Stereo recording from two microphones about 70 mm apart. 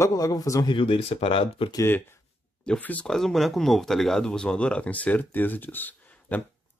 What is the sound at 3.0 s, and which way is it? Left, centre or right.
Speech, centre.